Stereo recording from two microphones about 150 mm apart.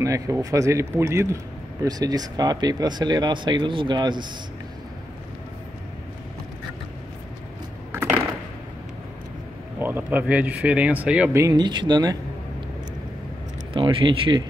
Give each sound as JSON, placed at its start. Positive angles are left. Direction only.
{"t": 0.0, "sound": "speech", "side_deg": -20}
{"t": 7.9, "sound": "a sound", "side_deg": -10}
{"t": 9.8, "sound": "speech", "side_deg": -15}
{"t": 11.3, "sound": "speech", "side_deg": -25}
{"t": 13.7, "sound": "speech", "side_deg": -35}